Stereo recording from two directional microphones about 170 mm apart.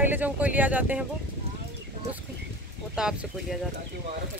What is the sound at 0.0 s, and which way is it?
Speech, 10° right (ahead or behind).